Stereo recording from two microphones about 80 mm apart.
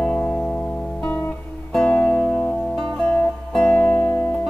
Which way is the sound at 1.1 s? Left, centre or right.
Left.